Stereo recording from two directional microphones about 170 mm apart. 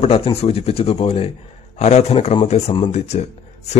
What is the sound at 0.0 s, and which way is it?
A man's voice, 35° left (ahead or behind).